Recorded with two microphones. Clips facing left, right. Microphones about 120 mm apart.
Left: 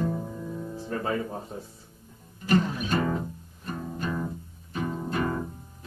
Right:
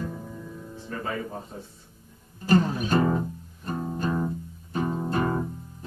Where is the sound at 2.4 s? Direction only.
35° right (ahead or behind).